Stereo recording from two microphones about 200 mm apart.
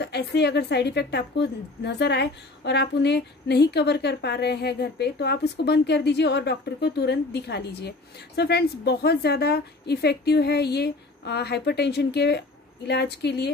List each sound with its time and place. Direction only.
0.0 s a woman's voice: 55° left (ahead or behind)